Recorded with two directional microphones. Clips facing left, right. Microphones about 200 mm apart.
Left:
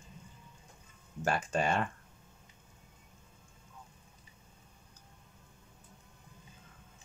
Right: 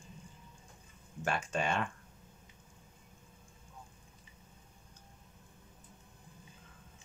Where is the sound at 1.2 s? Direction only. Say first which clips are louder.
Left 3 dB; 35° left (ahead or behind).